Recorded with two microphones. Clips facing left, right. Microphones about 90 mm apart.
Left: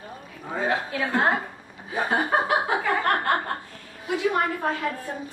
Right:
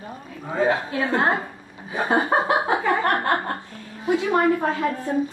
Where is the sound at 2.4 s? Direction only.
20° right (ahead or behind).